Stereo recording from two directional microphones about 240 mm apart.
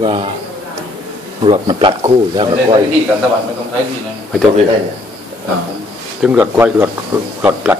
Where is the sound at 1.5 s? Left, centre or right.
Centre.